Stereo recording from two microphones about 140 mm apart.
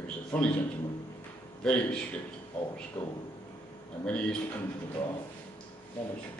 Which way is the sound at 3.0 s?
15° left (ahead or behind).